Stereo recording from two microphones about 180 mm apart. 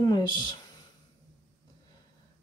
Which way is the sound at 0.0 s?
25° left (ahead or behind).